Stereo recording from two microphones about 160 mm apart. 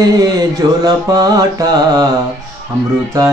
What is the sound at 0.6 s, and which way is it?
Music, 25° right (ahead or behind).